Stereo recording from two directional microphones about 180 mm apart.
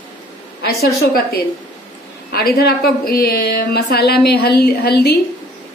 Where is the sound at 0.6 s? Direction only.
60° left (ahead or behind).